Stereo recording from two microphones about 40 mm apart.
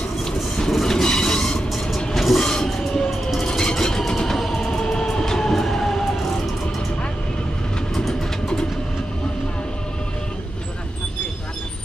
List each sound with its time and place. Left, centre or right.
0.2 s train: centre
2.1 s train: centre
2.4 s train: centre
3.3 s vehicle: centre
4.3 s music: centre
5.1 s train: centre
8.1 s train: centre